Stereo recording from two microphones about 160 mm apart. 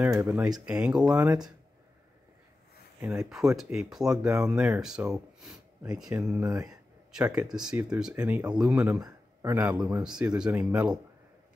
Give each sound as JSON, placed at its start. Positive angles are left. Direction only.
{"t": 0.1, "sound": "speech", "side_deg": -20}
{"t": 0.7, "sound": "speech", "side_deg": -5}
{"t": 3.0, "sound": "speech", "side_deg": -5}
{"t": 6.3, "sound": "speech", "side_deg": -20}
{"t": 7.1, "sound": "speech", "side_deg": -5}